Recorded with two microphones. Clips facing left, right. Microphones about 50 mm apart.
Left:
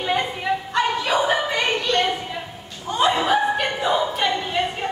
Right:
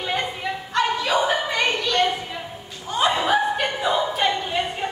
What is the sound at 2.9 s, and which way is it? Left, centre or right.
Chuckle, centre.